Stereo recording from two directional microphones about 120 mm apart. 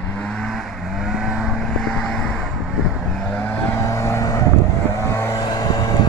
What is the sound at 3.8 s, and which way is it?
Vehicle, 25° left (ahead or behind).